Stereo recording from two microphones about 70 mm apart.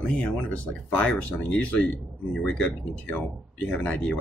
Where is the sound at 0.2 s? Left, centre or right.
Centre.